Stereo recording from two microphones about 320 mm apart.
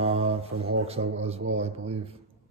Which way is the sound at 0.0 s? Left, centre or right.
Centre.